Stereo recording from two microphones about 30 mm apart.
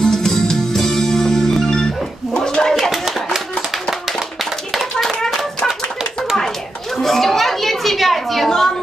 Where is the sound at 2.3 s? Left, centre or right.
Left.